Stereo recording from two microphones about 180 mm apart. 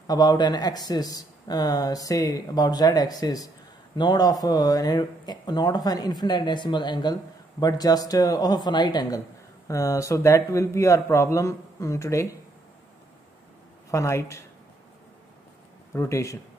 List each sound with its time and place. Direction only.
0.0 s a man's voice: 20° left (ahead or behind)
13.8 s a man's voice: 15° left (ahead or behind)
15.9 s a man's voice: 15° left (ahead or behind)